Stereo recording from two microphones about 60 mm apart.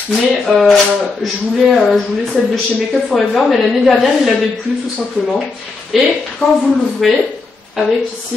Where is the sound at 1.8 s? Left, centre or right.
Centre.